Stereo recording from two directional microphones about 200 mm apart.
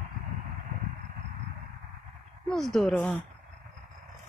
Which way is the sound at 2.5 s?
Centre (ahead or behind).